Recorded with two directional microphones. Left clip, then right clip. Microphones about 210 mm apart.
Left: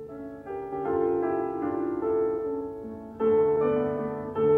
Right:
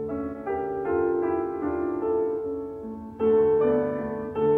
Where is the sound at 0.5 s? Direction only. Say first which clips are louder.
Right 2 dB; 35° right (ahead or behind).